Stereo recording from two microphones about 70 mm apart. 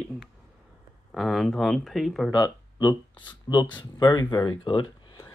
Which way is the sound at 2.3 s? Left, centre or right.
Left.